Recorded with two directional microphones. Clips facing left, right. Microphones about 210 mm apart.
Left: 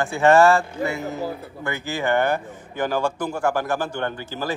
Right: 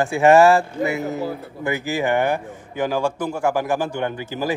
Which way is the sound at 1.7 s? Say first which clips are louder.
Right 2 dB; 5° right (ahead or behind).